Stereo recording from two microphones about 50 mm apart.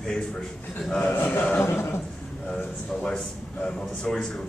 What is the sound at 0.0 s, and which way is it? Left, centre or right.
Speech, centre.